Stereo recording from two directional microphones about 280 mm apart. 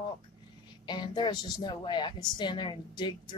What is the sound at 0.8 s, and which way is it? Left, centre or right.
Speech, centre.